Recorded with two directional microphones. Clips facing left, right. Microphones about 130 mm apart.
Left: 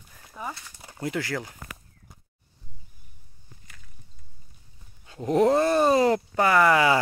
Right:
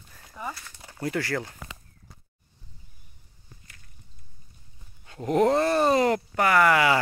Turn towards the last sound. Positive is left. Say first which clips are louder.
# left 1 dB
turn(degrees=25)  # may be behind; listen again after turning